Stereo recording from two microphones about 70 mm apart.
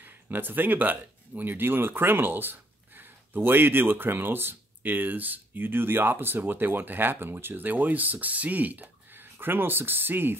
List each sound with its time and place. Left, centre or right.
0.0 s speech: right